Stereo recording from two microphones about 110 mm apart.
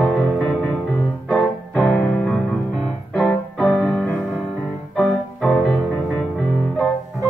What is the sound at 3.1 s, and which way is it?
Piano, 10° left (ahead or behind).